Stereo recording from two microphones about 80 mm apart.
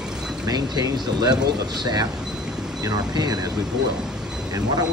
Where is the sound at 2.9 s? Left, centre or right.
Right.